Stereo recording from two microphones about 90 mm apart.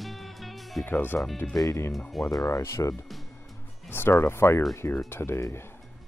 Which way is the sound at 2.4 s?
35° left (ahead or behind).